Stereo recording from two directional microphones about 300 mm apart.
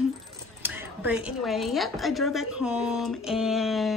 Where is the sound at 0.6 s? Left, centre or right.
Centre.